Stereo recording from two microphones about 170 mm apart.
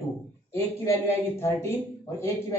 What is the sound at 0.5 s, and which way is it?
A man's voice, 15° left (ahead or behind).